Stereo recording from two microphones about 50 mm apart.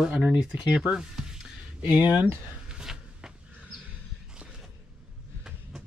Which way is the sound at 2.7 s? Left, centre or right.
Centre.